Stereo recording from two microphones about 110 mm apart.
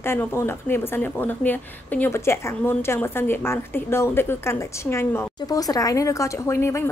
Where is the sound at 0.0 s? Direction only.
20° left (ahead or behind).